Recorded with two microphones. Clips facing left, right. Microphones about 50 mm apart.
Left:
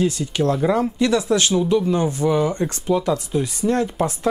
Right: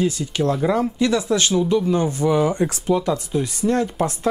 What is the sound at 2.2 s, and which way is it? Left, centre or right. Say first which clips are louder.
Speech: right 2 dB; centre.